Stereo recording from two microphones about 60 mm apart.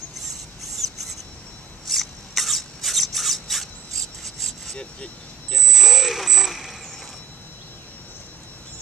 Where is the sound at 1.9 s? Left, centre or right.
Centre.